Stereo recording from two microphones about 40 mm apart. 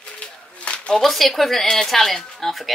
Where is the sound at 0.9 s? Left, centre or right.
Centre.